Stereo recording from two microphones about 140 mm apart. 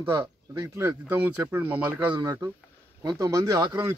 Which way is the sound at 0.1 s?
20° right (ahead or behind).